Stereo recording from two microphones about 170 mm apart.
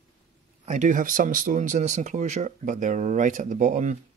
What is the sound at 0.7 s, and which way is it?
Speech, 45° right (ahead or behind).